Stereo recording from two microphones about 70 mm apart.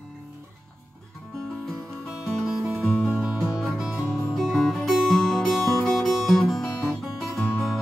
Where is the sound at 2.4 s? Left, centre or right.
Centre.